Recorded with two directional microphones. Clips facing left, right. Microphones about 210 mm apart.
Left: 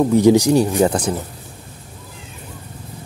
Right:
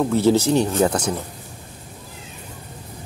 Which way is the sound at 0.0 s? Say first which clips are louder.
Left 5 dB; 15° left (ahead or behind).